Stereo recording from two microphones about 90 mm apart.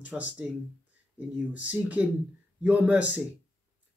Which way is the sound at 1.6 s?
15° right (ahead or behind).